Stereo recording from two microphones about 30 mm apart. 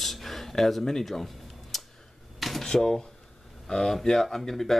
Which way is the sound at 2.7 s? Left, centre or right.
Centre.